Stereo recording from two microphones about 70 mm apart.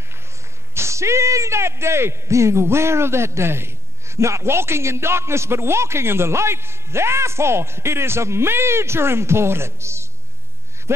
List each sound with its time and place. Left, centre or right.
0.7 s a man's voice: right